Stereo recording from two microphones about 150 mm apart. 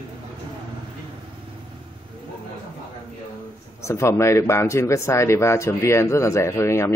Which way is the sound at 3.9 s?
20° left (ahead or behind).